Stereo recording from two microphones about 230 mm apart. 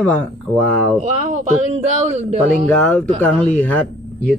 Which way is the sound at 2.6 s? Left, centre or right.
Centre.